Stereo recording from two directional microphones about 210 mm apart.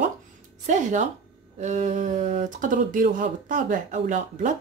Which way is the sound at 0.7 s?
35° right (ahead or behind).